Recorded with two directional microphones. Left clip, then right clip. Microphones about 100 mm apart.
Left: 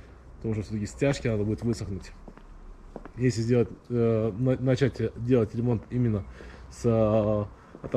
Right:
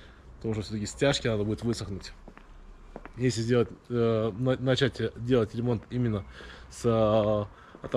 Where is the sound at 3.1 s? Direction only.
55° right (ahead or behind).